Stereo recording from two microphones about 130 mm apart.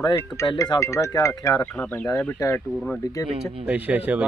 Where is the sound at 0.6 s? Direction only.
25° left (ahead or behind).